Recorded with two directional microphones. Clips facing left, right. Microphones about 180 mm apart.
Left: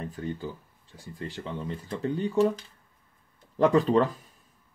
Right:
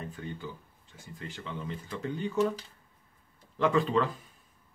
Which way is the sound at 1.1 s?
35° left (ahead or behind).